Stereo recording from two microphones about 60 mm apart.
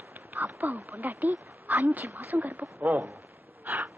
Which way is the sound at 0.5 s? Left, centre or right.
Right.